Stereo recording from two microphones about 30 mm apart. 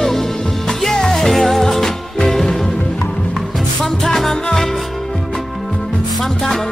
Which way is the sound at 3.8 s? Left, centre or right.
Centre.